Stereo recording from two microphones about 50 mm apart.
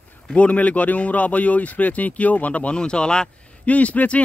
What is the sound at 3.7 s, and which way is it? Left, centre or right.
Speech, left.